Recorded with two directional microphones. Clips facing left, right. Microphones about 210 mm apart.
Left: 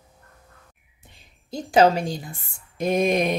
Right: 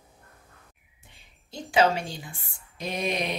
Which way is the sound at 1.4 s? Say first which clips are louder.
Left 5 dB; 40° left (ahead or behind).